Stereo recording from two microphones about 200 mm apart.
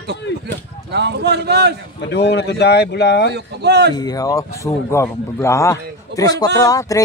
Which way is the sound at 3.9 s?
20° left (ahead or behind).